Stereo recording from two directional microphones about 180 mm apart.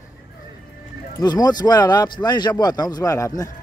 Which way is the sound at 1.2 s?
20° left (ahead or behind).